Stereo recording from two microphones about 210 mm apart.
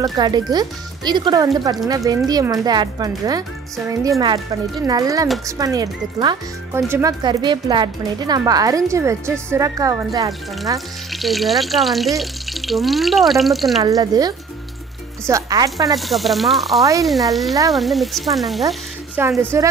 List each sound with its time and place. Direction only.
0.0 s speech: 20° right (ahead or behind)
11.1 s speech: centre (ahead or behind)
13.8 s speech: 15° right (ahead or behind)
15.8 s speech: centre (ahead or behind)
19.5 s speech: 10° right (ahead or behind)